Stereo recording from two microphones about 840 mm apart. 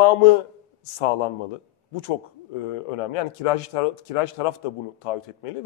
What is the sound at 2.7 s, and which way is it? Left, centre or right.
Speech, left.